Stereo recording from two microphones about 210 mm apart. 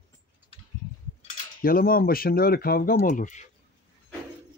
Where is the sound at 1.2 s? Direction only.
45° left (ahead or behind).